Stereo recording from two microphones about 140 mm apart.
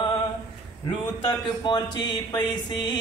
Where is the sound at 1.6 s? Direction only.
30° left (ahead or behind).